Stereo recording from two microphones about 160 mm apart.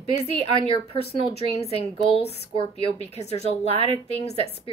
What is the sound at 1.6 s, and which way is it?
A woman's voice, 40° left (ahead or behind).